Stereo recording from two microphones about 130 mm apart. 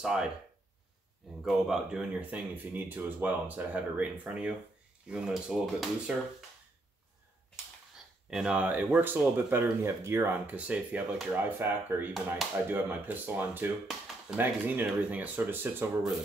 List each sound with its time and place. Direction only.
0.0 s speech: 5° right (ahead or behind)
1.4 s speech: 5° right (ahead or behind)
8.3 s speech: 5° right (ahead or behind)